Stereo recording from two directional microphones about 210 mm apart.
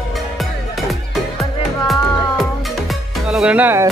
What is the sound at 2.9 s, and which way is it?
Music, 5° right (ahead or behind).